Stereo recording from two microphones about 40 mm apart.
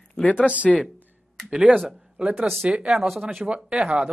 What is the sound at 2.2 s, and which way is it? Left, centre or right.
Speech, centre.